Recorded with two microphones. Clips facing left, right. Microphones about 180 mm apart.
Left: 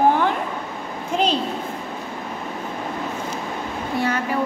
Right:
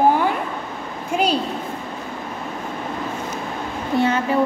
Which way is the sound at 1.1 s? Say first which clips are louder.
Right 1 dB; 10° right (ahead or behind).